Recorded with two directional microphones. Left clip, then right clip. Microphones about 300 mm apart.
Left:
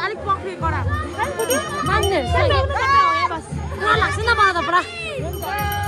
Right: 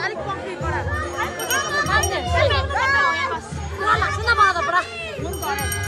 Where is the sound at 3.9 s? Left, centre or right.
Left.